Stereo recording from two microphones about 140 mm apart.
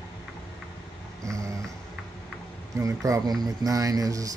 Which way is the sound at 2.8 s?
25° right (ahead or behind).